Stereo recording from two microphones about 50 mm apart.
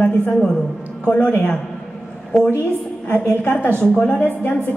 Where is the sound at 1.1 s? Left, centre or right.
Left.